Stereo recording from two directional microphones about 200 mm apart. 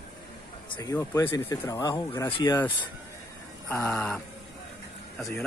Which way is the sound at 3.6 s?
10° left (ahead or behind).